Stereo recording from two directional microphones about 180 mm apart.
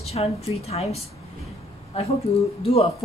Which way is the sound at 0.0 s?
35° left (ahead or behind).